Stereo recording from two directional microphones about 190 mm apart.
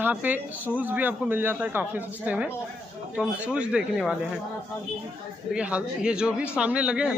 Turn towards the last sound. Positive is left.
turn(degrees=-5)  # may be behind; listen again after turning